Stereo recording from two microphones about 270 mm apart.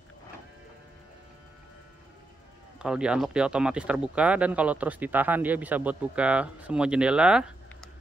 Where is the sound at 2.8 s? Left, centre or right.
Centre.